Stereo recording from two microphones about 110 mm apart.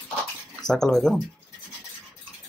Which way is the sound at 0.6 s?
5° left (ahead or behind).